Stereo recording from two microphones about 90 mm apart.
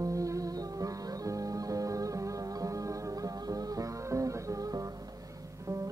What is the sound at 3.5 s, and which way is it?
Music, 40° right (ahead or behind).